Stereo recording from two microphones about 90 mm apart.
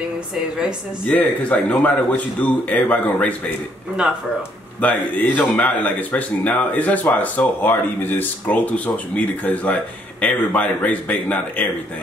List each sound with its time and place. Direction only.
1.0 s speech: 20° left (ahead or behind)
4.7 s speech: 15° left (ahead or behind)